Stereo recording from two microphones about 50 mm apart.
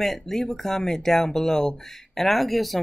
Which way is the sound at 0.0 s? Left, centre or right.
Centre.